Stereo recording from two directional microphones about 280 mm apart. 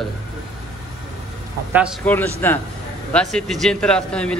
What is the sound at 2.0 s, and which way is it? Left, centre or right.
A man's voice, centre.